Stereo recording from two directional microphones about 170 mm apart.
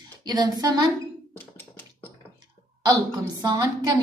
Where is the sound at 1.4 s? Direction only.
10° left (ahead or behind).